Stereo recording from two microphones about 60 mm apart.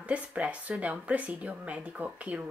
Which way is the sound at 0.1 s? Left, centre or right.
Right.